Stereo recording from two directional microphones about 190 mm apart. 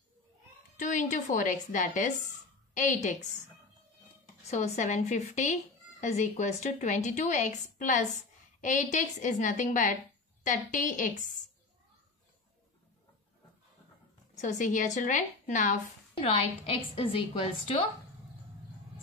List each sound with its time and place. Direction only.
0.7 s a woman's voice: 40° left (ahead or behind)
4.5 s a woman's voice: 35° left (ahead or behind)
14.3 s a woman's voice: 40° left (ahead or behind)